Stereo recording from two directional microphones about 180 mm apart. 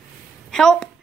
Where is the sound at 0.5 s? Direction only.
5° left (ahead or behind).